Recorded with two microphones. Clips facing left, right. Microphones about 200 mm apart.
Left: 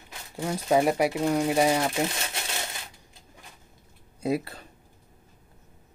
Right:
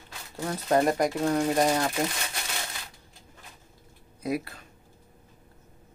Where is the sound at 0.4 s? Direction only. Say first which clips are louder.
Left 1 dB; 10° left (ahead or behind).